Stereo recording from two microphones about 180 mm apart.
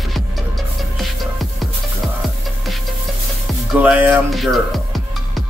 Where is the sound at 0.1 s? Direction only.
Centre (ahead or behind).